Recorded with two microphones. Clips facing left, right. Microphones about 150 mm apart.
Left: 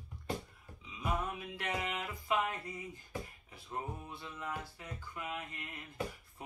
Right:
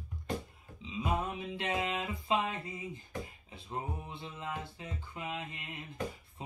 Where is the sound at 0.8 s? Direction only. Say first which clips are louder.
Right 3 dB; 20° right (ahead or behind).